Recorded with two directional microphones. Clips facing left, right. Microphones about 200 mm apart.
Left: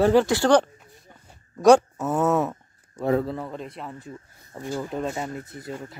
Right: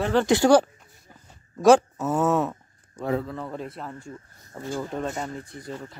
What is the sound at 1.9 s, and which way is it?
Speech, centre (ahead or behind).